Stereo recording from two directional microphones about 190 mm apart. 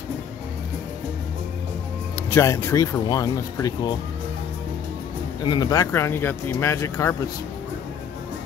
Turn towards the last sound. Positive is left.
turn(degrees=15)  # may be behind; listen again after turning